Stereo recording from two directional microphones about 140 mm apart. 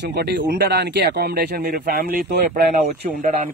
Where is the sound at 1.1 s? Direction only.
90° right.